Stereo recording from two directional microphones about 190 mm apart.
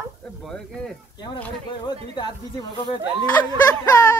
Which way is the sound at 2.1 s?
20° left (ahead or behind).